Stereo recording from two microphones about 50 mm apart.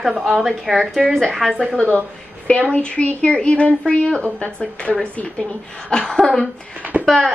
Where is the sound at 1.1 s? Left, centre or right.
Centre.